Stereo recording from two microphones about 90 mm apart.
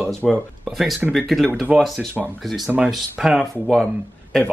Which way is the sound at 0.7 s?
Centre (ahead or behind).